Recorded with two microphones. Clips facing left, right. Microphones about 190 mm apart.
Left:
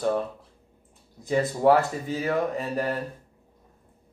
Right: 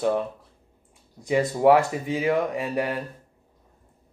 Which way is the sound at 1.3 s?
15° right (ahead or behind).